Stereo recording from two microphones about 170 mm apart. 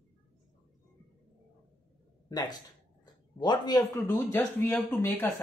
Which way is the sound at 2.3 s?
25° left (ahead or behind).